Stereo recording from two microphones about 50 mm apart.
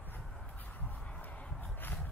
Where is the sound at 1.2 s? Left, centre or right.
Left.